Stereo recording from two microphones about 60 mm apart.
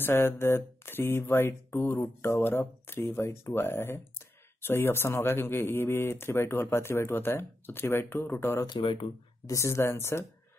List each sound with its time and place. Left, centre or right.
0.0 s speech: left
9.5 s a woman's voice: left